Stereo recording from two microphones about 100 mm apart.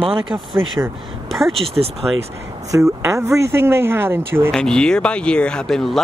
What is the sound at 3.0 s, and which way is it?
Speech, 30° right (ahead or behind).